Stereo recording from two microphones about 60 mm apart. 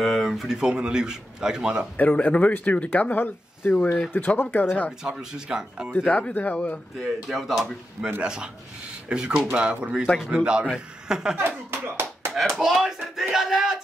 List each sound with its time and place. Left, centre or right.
0.0 s speech: centre
0.6 s a man's voice: centre
2.0 s speech: left
5.1 s a man's voice: centre
6.0 s speech: centre
7.2 s a man's voice: centre
11.3 s speech: right
12.4 s a man's voice: centre